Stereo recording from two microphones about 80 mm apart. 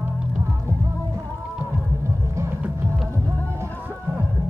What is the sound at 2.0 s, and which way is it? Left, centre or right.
Music, right.